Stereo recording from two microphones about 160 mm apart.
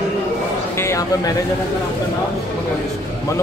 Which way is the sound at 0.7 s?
20° left (ahead or behind).